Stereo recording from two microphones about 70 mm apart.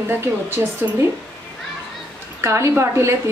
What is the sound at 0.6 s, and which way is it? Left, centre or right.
Speech, right.